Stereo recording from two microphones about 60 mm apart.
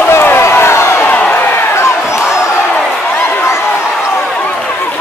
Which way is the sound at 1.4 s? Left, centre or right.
Left.